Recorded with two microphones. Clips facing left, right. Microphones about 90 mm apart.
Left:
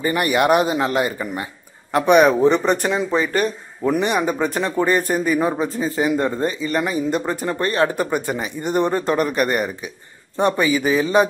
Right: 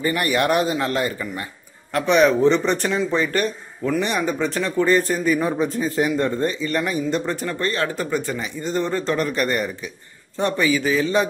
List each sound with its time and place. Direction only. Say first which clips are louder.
0.0 s a man's voice: left 2 dB; 15° left (ahead or behind)
4.6 s a man's voice: right 2 dB; 25° left (ahead or behind); by 7.3 s 5° left (ahead or behind)
7.4 s a man's voice: left 4 dB; 20° left (ahead or behind)